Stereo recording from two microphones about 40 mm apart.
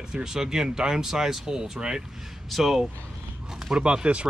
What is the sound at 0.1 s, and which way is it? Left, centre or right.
Speech, centre.